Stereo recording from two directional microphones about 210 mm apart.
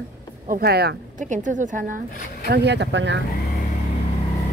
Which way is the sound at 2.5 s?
55° right (ahead or behind).